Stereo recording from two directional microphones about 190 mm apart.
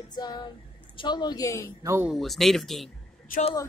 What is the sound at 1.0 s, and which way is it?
Speech, 25° left (ahead or behind).